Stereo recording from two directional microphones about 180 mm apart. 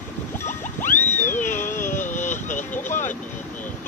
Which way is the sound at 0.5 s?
45° left (ahead or behind).